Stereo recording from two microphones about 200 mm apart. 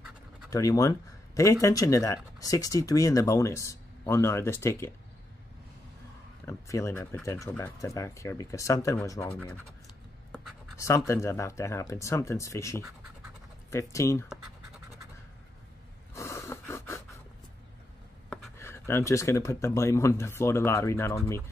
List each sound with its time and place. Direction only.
0.5 s speech: 15° left (ahead or behind)
6.4 s speech: 15° left (ahead or behind)
10.8 s speech: 15° left (ahead or behind)
16.2 s gasp: 15° left (ahead or behind)
18.6 s speech: 10° left (ahead or behind)